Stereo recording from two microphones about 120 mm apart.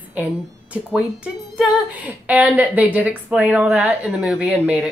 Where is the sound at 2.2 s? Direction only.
15° right (ahead or behind).